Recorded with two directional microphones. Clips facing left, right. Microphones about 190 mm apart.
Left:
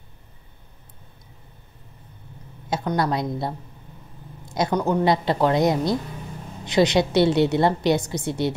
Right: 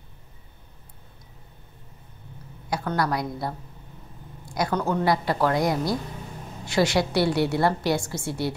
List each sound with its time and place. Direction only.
2.7 s a woman's voice: 20° left (ahead or behind)